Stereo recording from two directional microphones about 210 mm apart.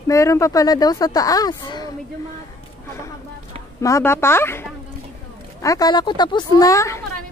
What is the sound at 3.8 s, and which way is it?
A woman's voice, 15° left (ahead or behind).